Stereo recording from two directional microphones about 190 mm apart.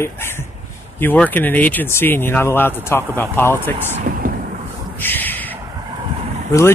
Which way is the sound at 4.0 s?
45° right (ahead or behind).